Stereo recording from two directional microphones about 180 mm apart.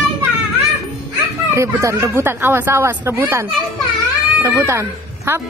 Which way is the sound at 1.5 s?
15° right (ahead or behind).